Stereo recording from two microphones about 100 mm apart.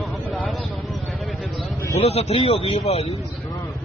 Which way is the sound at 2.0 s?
90° left.